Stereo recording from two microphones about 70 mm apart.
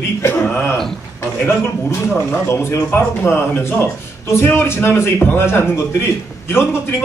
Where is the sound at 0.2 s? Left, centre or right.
Left.